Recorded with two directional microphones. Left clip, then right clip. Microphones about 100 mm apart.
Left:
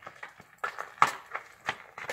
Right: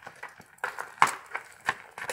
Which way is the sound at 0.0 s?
Centre (ahead or behind).